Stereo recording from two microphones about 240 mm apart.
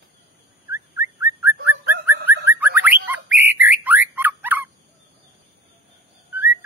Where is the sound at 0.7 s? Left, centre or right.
Centre.